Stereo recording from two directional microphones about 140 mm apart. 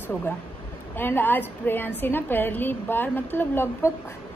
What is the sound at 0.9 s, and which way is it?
A woman's voice, 15° left (ahead or behind).